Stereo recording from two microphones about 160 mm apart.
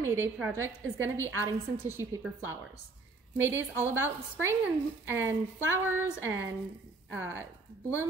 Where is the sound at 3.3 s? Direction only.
10° right (ahead or behind).